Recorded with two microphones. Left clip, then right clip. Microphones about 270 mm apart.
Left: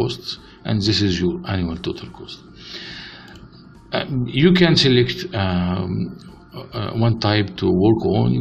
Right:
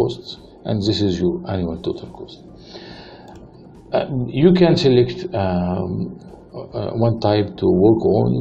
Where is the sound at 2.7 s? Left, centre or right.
Left.